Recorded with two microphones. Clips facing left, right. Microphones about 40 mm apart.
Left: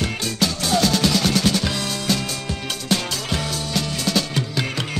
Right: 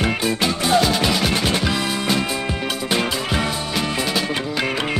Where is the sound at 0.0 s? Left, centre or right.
Right.